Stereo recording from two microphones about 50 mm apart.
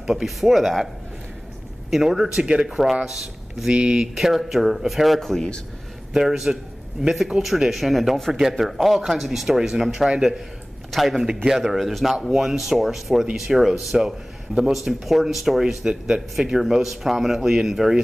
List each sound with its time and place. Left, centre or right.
0.0 s speech: centre
1.9 s a man's voice: centre
2.2 s speech: centre
2.7 s a man's voice: centre
3.7 s speech: centre
6.1 s speech: centre